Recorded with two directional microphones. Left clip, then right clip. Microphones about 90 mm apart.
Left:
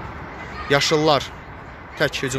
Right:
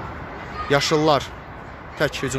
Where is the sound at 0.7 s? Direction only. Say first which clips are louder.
Left 1 dB; 10° right (ahead or behind).